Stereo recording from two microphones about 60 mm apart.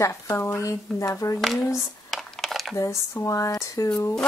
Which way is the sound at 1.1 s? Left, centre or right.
Left.